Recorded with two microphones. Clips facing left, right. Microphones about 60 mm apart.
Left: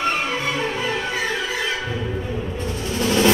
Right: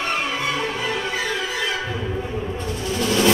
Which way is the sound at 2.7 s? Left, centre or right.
Right.